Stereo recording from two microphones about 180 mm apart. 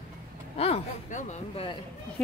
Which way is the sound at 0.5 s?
35° left (ahead or behind).